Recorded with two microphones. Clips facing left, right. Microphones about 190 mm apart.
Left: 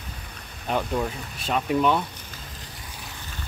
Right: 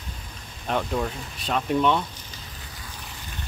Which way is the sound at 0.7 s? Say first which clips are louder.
Even; centre (ahead or behind).